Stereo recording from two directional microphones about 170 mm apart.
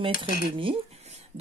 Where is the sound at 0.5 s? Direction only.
30° right (ahead or behind).